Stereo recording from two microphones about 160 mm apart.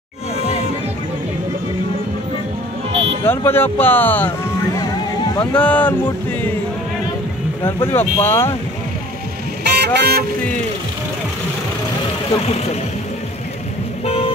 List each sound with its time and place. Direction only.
3.3 s speech: 15° left (ahead or behind)
5.3 s speech: 30° left (ahead or behind)
5.6 s speech: 10° left (ahead or behind)
7.6 s speech: 15° left (ahead or behind)
9.6 s vehicle: 90° right